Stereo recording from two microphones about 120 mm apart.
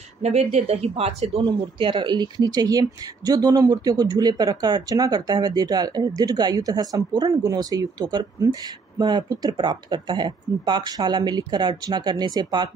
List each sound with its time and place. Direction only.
0.2 s speech: 60° right (ahead or behind)
1.4 s speech: 40° right (ahead or behind)